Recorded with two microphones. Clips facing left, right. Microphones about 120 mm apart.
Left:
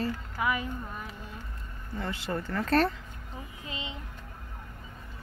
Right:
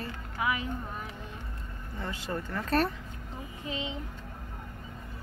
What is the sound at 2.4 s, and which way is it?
Speech, 15° right (ahead or behind).